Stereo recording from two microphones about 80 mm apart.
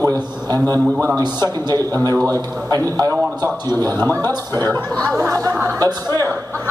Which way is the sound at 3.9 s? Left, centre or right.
Left.